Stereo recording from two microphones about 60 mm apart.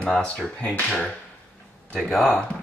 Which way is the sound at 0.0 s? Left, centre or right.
Centre.